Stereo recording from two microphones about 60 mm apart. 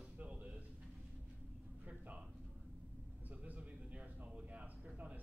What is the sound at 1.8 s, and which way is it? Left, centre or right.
Speech, right.